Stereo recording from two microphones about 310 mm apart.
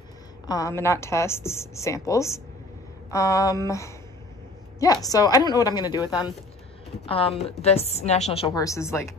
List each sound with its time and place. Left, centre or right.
0.5 s a woman's voice: centre